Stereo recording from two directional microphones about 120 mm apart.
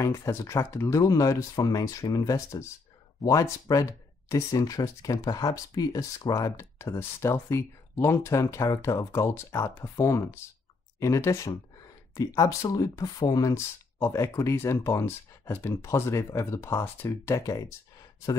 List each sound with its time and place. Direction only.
0.0 s speech: 25° left (ahead or behind)